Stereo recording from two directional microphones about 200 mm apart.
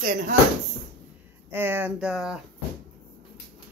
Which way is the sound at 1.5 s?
10° right (ahead or behind).